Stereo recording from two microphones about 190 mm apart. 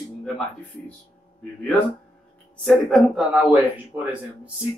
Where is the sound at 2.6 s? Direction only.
Centre (ahead or behind).